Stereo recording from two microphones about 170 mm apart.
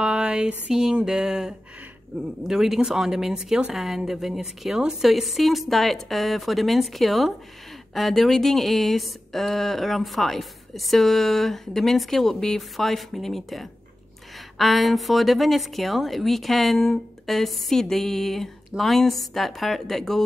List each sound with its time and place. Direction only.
0.0 s speech: 5° right (ahead or behind)